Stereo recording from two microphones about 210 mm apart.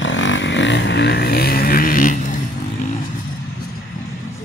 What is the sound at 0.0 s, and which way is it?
Vehicle, 60° left (ahead or behind).